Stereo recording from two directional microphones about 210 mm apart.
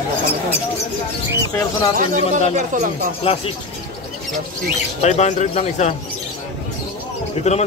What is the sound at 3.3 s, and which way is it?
Speech, 30° left (ahead or behind).